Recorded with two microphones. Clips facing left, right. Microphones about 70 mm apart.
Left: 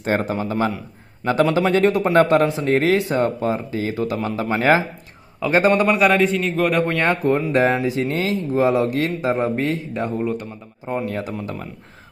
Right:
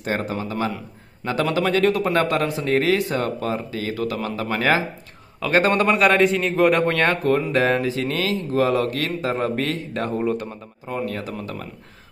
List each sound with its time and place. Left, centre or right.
0.0 s a man's voice: left
5.4 s a man's voice: centre
7.1 s a man's voice: centre
9.9 s a man's voice: centre
10.9 s a man's voice: left